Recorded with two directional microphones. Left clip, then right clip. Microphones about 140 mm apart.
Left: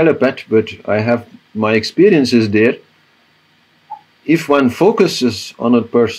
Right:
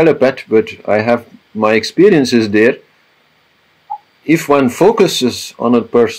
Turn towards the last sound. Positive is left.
turn(degrees=-10)  # may be behind; listen again after turning